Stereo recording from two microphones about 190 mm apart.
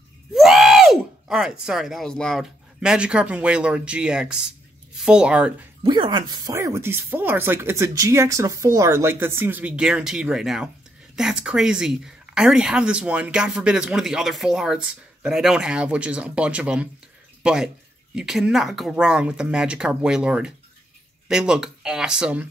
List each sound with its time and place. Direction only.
0.3 s speech: centre (ahead or behind)
5.9 s speech: 25° right (ahead or behind); by 22.5 s 5° right (ahead or behind)